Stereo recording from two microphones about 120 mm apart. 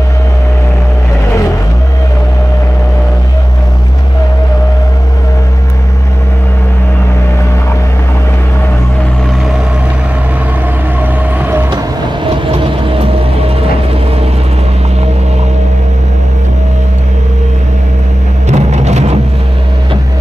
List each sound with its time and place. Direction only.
11.0 s vehicle: 15° right (ahead or behind)
12.4 s vehicle: 50° right (ahead or behind)
18.5 s a sound: 70° right (ahead or behind)